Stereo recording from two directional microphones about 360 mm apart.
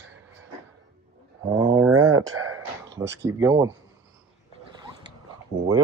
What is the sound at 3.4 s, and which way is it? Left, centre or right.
Speech, centre.